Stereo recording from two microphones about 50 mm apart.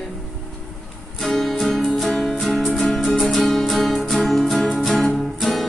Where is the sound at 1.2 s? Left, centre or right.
Centre.